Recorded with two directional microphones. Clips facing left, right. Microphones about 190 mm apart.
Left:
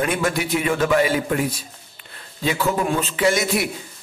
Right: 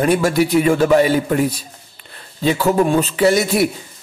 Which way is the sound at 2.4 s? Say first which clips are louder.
Right 6 dB; 30° right (ahead or behind).